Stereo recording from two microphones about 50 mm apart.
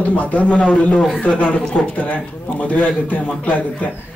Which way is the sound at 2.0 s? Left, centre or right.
Left.